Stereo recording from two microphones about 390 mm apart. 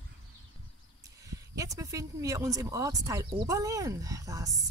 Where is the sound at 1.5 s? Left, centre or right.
Centre.